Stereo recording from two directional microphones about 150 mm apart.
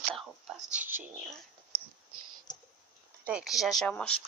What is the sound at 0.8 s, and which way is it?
Speech, 15° right (ahead or behind).